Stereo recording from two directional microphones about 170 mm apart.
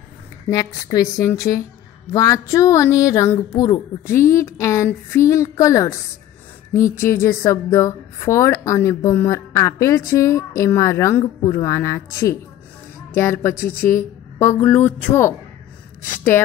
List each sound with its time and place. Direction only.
0.5 s a woman's voice: 20° left (ahead or behind)